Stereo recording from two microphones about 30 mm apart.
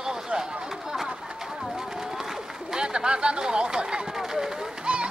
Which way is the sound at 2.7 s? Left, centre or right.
Right.